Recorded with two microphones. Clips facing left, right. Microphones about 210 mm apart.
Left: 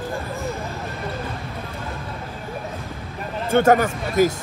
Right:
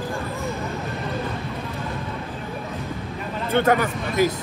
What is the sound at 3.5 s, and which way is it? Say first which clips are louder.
Speech: left 3 dB; 45° left (ahead or behind).